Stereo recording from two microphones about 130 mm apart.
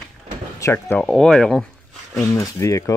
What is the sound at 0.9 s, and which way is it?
Speech, 5° left (ahead or behind).